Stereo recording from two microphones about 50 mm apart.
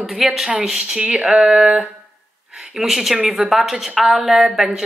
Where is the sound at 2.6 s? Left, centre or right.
Centre.